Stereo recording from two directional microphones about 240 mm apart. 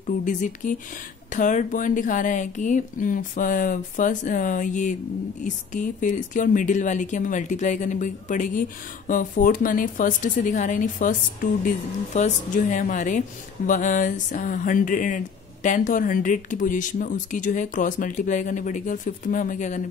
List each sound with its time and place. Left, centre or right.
0.2 s speech: left